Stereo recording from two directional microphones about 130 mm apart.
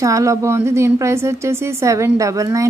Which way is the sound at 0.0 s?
25° right (ahead or behind).